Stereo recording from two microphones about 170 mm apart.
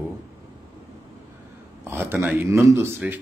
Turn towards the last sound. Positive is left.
turn(degrees=-15)  # may be behind; listen again after turning